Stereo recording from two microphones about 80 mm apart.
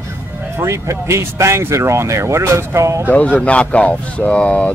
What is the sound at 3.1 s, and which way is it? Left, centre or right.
Speech, centre.